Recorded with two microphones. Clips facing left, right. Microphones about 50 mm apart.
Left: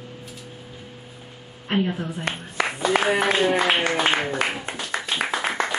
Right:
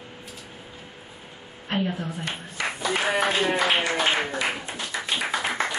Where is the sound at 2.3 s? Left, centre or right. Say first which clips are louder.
Left 4 dB; left.